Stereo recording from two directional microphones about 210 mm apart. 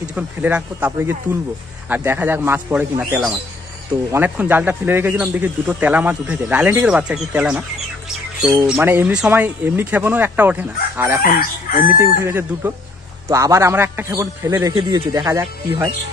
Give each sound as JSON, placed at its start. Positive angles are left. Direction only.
{"t": 0.1, "sound": "speech", "side_deg": -5}
{"t": 11.7, "sound": "chicken", "side_deg": 45}
{"t": 12.2, "sound": "speech", "side_deg": -10}